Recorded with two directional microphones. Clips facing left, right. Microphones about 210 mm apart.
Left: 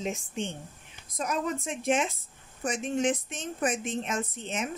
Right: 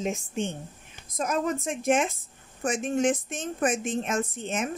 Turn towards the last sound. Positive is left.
turn(degrees=-50)  # may be behind; listen again after turning